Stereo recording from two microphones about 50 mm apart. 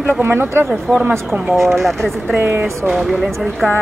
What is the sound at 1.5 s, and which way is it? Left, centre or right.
Speech, centre.